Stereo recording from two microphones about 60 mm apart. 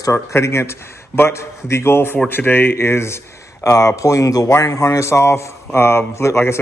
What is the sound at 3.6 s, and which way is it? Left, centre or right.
A man's voice, left.